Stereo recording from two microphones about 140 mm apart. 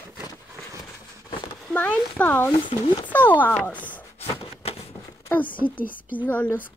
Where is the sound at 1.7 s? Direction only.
10° left (ahead or behind).